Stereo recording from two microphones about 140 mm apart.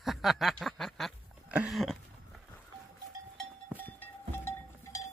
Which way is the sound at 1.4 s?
10° right (ahead or behind).